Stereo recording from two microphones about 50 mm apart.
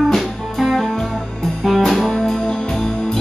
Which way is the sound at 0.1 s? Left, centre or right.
Centre.